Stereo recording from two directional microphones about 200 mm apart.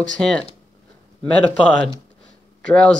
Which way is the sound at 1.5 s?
5° left (ahead or behind).